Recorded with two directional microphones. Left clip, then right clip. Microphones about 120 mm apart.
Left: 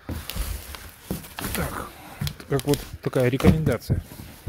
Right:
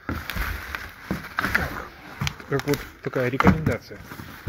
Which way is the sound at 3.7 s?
75° left (ahead or behind).